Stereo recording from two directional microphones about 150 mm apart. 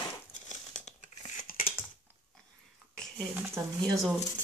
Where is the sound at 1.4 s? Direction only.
70° left (ahead or behind).